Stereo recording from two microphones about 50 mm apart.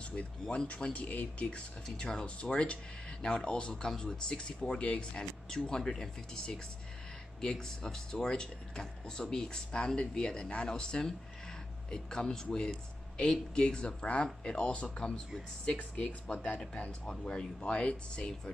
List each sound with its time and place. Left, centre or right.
0.1 s speech: left
2.0 s speech: centre